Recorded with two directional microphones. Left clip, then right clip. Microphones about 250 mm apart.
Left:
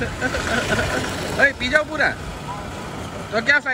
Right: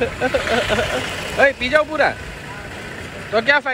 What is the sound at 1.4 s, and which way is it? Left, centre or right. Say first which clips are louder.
Speech: right 3 dB; centre.